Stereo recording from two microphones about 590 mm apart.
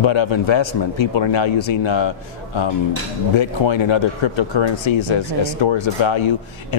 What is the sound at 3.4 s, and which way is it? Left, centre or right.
Speech, left.